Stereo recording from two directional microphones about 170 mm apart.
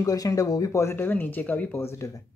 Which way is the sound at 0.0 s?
20° left (ahead or behind).